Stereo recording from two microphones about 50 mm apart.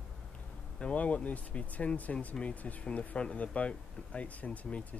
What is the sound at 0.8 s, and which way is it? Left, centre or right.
Speech, left.